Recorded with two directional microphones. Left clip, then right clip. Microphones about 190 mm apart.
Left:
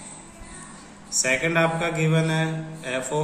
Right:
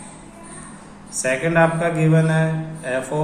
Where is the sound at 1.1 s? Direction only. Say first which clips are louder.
Right 2 dB; 25° left (ahead or behind).